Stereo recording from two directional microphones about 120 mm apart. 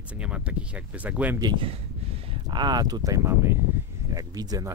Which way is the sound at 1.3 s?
35° right (ahead or behind).